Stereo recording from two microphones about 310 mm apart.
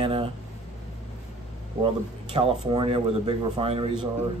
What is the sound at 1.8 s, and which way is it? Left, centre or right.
Speech, centre.